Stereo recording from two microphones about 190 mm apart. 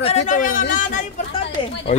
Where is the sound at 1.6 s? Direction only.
25° left (ahead or behind).